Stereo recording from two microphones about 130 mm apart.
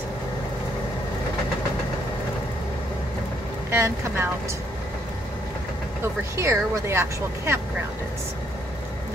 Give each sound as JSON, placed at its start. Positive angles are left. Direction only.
{"t": 3.7, "sound": "speech", "side_deg": -20}
{"t": 6.3, "sound": "speech", "side_deg": -20}